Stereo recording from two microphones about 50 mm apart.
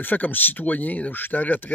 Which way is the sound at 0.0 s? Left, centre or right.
Left.